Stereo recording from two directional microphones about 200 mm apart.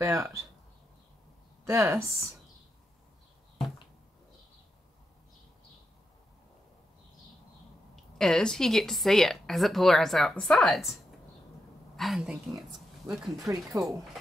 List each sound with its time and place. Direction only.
0.0 s speech: 15° right (ahead or behind)
1.7 s speech: 15° right (ahead or behind)
7.9 s speech: centre (ahead or behind)
12.0 s speech: 5° right (ahead or behind)
13.5 s speech: 15° right (ahead or behind)